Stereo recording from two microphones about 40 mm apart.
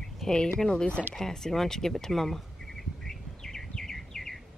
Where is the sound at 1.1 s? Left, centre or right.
Centre.